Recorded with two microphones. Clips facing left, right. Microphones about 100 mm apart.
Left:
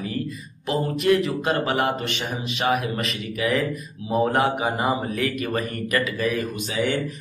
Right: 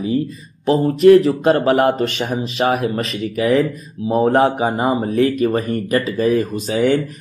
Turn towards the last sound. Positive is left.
turn(degrees=-40)  # may be behind; listen again after turning